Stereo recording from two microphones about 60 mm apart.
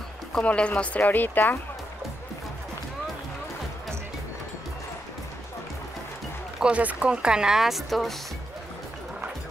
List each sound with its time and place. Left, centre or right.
0.3 s speech: centre
6.6 s speech: right; by 8.1 s centre